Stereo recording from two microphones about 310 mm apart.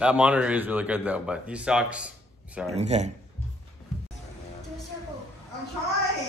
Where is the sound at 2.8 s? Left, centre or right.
Right.